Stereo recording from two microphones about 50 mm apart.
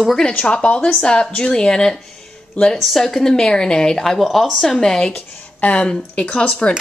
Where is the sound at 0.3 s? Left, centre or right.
Left.